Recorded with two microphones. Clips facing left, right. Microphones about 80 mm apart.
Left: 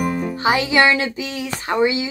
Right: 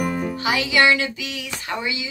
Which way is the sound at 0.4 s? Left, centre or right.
Left.